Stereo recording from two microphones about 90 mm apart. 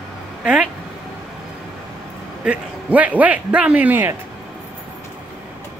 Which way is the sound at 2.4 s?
15° right (ahead or behind).